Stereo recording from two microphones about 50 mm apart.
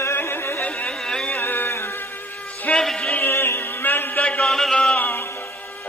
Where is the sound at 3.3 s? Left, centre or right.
Left.